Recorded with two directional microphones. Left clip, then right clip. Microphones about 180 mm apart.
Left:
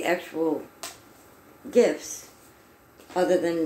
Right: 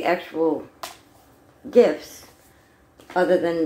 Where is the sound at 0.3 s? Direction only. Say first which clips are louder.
Right 4 dB; centre (ahead or behind).